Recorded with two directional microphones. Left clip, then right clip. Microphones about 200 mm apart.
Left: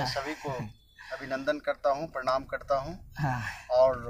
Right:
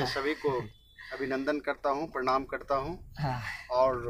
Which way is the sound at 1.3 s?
20° right (ahead or behind).